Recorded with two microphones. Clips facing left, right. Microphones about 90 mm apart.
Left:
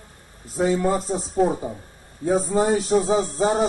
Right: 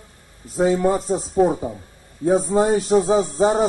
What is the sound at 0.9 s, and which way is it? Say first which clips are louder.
Speech: right 2 dB; 45° right (ahead or behind).